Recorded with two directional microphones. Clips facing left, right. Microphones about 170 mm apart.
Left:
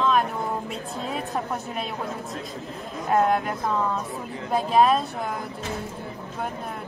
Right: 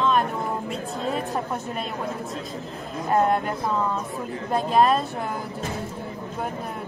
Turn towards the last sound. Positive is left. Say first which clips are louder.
# even
turn(degrees=0)  # may be behind; listen again after turning